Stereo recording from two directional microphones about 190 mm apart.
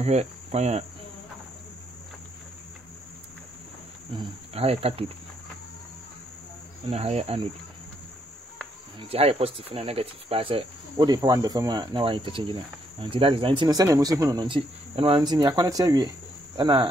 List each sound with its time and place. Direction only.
0.0 s cricket: 35° right (ahead or behind)
4.2 s speech: 30° right (ahead or behind)
6.9 s speech: 35° right (ahead or behind)
9.1 s speech: 30° right (ahead or behind)